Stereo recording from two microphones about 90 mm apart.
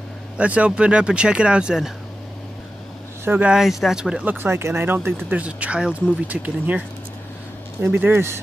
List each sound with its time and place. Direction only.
0.4 s speech: 15° right (ahead or behind)
3.3 s speech: 15° right (ahead or behind)
4.4 s speech: 30° right (ahead or behind)
7.8 s speech: 25° right (ahead or behind)